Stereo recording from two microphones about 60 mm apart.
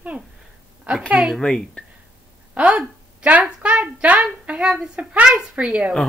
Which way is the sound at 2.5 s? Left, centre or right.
Centre.